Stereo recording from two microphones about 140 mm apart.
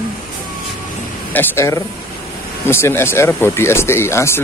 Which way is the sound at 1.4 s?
20° left (ahead or behind).